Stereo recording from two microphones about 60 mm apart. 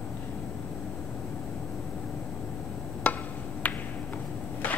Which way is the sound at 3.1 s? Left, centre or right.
Left.